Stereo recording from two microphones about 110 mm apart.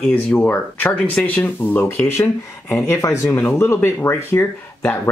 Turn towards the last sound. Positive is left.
turn(degrees=25)  # may be behind; listen again after turning